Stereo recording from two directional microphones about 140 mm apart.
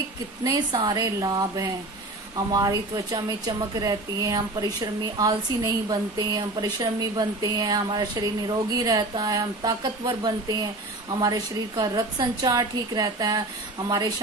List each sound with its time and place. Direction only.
0.4 s a woman's voice: 30° right (ahead or behind)